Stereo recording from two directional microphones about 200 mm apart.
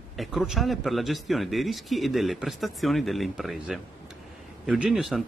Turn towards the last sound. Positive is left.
turn(degrees=0)  # may be behind; listen again after turning